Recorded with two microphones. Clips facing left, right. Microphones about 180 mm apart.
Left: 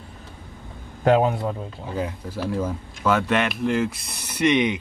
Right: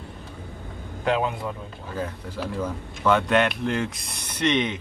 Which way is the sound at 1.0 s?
40° left (ahead or behind).